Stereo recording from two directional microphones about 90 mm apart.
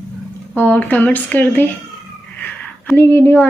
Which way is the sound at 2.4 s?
20° left (ahead or behind).